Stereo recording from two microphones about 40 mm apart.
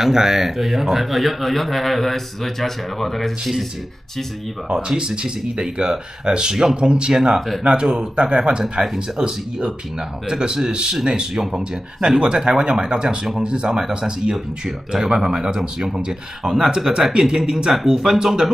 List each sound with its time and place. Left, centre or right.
0.0 s speech: centre
4.7 s speech: centre
7.3 s speech: centre
7.6 s speech: right
10.2 s speech: centre